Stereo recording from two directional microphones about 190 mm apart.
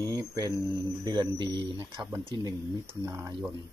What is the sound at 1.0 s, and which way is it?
Speech, 25° right (ahead or behind).